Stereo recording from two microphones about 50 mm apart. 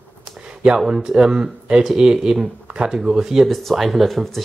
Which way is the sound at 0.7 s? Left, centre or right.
Centre.